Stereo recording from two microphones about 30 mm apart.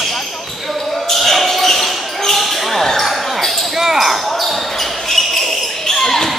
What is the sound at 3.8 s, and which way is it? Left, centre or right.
Basketball bounce, centre.